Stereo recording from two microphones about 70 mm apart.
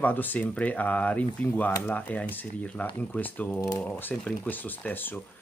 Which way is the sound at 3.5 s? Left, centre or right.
Left.